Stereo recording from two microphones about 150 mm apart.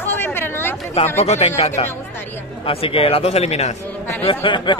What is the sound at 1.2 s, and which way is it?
Speech, 45° left (ahead or behind).